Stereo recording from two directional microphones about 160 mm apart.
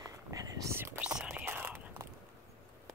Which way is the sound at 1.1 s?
10° right (ahead or behind).